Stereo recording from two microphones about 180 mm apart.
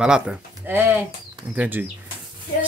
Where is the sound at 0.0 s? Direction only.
5° right (ahead or behind).